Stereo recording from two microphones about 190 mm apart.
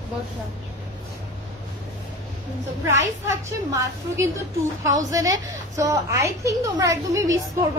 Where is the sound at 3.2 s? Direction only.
15° right (ahead or behind).